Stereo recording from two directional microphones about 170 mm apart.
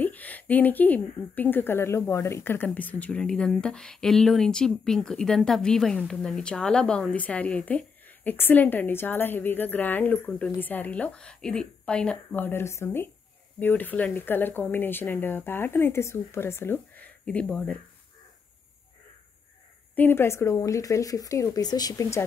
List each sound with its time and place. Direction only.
0.0 s a woman's voice: 10° left (ahead or behind)
20.0 s speech: 15° left (ahead or behind)